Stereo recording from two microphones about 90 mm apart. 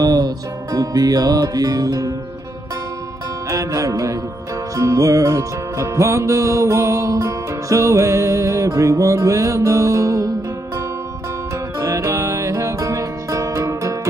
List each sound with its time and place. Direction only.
0.0 s music: 45° right (ahead or behind)
3.4 s music: 35° right (ahead or behind)
11.8 s music: 35° right (ahead or behind)